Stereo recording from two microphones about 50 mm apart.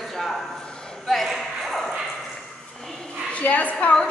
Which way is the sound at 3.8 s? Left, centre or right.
Left.